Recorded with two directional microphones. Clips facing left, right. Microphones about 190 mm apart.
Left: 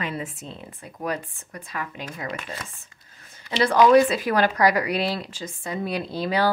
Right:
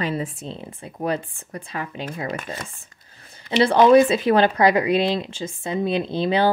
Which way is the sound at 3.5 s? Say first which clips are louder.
Right 3 dB; 25° right (ahead or behind).